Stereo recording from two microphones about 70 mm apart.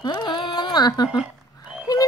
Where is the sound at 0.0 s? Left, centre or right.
Left.